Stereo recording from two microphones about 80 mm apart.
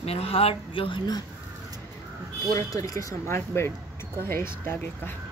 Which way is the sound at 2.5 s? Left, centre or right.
Left.